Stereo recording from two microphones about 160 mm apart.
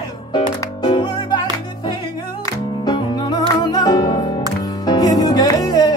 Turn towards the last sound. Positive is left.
turn(degrees=25)  # may be behind; listen again after turning